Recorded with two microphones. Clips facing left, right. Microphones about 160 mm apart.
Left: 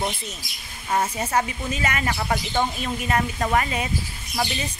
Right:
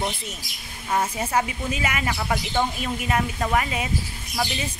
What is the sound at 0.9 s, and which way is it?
Speech, 5° right (ahead or behind).